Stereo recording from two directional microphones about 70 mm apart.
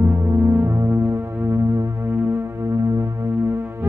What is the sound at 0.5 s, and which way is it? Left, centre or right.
Synthesizer, right.